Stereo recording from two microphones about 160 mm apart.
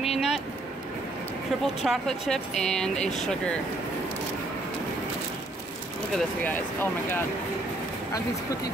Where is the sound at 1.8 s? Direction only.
Centre (ahead or behind).